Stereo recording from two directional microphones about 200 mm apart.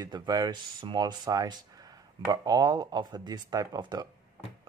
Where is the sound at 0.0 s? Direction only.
20° right (ahead or behind).